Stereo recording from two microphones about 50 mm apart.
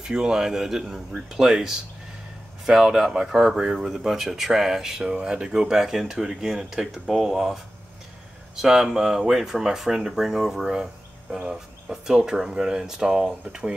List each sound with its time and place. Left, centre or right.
0.0 s speech: centre